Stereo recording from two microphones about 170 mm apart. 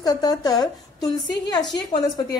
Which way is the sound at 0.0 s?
25° left (ahead or behind).